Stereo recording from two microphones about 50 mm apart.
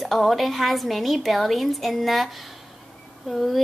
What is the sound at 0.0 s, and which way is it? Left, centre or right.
Speech, centre.